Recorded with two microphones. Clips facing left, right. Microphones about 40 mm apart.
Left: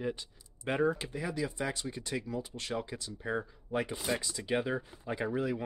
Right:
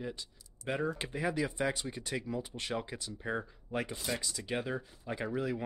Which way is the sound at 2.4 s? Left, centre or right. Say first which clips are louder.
Even; right.